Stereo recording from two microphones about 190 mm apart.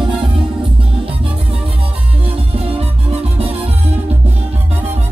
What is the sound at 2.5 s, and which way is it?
Music, 30° right (ahead or behind).